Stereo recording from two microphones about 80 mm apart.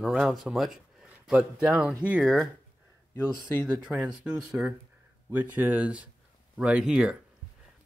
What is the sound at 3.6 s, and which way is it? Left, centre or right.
Speech, centre.